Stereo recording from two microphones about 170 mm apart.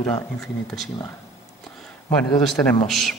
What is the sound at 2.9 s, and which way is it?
Speech, centre (ahead or behind).